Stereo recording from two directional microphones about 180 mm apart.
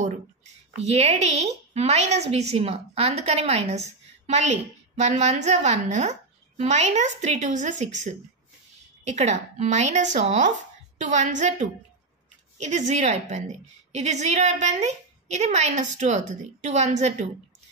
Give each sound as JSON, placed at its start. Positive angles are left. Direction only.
{"t": 0.8, "sound": "a woman's voice", "side_deg": -35}